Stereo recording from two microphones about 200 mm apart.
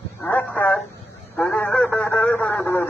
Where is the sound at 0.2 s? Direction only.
10° left (ahead or behind).